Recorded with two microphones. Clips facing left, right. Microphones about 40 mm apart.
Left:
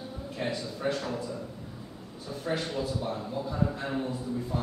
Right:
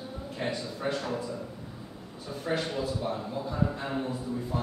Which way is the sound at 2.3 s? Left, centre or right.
Centre.